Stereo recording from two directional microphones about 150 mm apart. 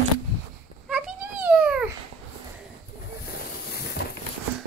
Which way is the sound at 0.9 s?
10° right (ahead or behind).